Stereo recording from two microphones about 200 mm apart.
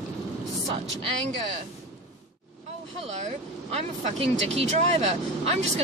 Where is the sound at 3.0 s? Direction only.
35° right (ahead or behind).